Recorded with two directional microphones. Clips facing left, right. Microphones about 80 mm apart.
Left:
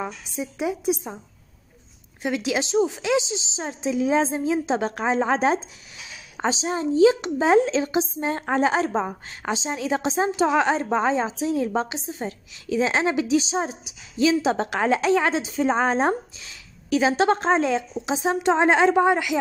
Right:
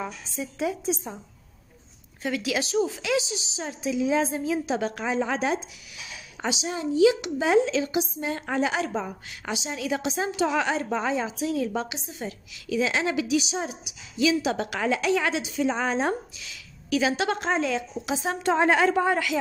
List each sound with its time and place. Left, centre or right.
0.4 s a woman's voice: centre
2.2 s a woman's voice: left
18.1 s a woman's voice: left